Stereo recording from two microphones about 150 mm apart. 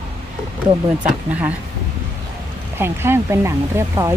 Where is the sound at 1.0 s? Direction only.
10° right (ahead or behind).